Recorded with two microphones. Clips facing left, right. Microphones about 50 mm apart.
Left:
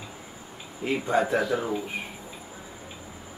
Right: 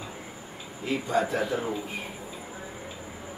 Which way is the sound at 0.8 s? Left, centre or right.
Left.